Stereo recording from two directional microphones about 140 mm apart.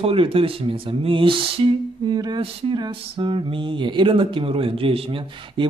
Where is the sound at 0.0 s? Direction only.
40° right (ahead or behind).